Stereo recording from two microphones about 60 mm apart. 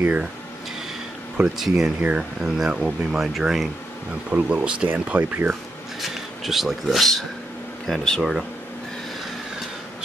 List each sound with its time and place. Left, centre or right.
0.0 s speech: right
1.6 s speech: centre
2.0 s speech: right
2.4 s speech: centre
4.3 s speech: right
5.9 s speech: centre